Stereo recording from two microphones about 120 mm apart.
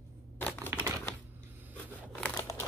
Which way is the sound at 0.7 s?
20° right (ahead or behind).